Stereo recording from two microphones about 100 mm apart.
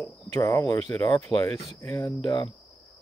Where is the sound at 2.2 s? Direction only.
55° left (ahead or behind).